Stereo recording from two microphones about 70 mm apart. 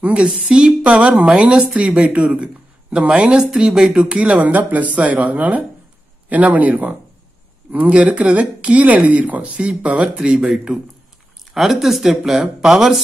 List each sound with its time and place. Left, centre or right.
0.0 s speech: centre